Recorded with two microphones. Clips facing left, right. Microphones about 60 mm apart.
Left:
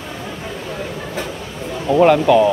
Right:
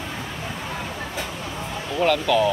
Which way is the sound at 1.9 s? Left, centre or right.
Left.